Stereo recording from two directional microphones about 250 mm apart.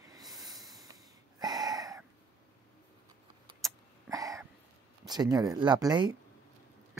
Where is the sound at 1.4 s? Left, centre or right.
Centre.